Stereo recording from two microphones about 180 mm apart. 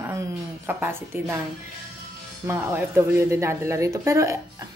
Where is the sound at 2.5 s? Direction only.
10° right (ahead or behind).